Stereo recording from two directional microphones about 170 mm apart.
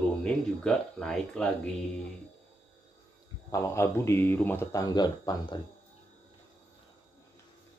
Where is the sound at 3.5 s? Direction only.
15° left (ahead or behind).